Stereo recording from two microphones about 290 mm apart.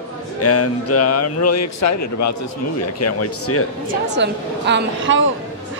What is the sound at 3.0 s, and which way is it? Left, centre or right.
Speech, left.